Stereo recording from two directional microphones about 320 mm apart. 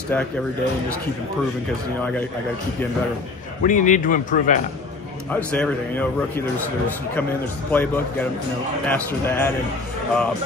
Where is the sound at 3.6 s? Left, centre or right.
Left.